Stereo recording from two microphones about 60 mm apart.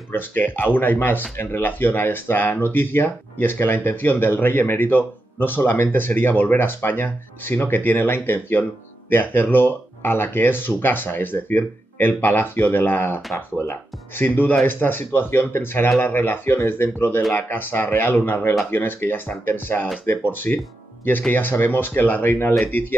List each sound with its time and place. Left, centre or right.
0.1 s speech: left